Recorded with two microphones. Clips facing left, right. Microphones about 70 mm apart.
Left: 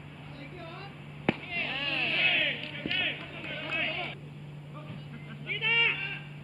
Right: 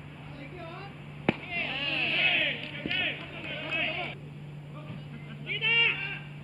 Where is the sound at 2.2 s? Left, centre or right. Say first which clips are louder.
Even; right.